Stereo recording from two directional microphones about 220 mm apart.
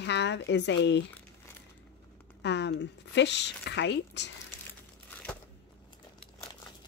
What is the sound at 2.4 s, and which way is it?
Speech, 50° left (ahead or behind).